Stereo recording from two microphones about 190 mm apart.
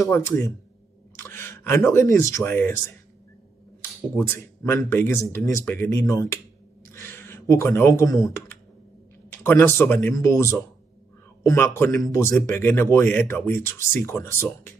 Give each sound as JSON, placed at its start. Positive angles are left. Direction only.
{"t": 0.1, "sound": "speech", "side_deg": 15}
{"t": 4.6, "sound": "speech", "side_deg": 15}